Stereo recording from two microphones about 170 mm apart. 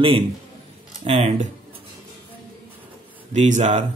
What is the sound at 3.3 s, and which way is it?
Speech, 45° right (ahead or behind).